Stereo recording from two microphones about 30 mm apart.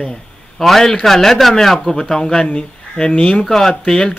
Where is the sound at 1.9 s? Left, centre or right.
Left.